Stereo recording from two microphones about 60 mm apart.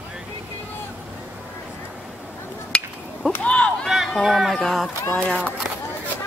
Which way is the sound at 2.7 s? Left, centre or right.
Centre.